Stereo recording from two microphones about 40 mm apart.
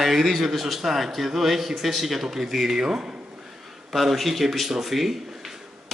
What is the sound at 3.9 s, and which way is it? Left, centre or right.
Speech, centre.